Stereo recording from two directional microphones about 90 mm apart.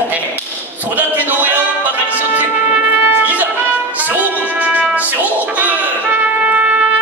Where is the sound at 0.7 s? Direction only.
20° right (ahead or behind).